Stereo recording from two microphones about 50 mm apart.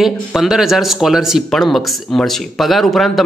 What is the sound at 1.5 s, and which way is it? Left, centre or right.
Speech, centre.